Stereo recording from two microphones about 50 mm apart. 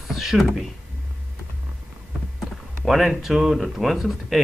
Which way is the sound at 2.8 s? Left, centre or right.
Centre.